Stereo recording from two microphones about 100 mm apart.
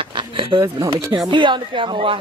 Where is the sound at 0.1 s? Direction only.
55° right (ahead or behind).